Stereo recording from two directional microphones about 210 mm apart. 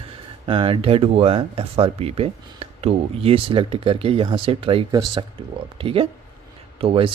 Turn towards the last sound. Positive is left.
turn(degrees=-25)  # may be behind; listen again after turning